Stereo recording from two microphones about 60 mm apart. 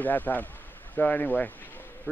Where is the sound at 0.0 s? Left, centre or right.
Left.